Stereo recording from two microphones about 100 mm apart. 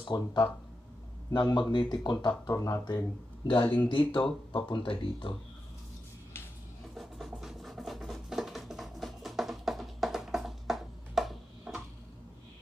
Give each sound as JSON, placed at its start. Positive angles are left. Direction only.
{"t": 0.0, "sound": "speech", "side_deg": 50}
{"t": 2.5, "sound": "speech", "side_deg": 35}
{"t": 3.6, "sound": "speech", "side_deg": 15}
{"t": 3.9, "sound": "speech", "side_deg": 60}
{"t": 7.0, "sound": "a sound", "side_deg": 0}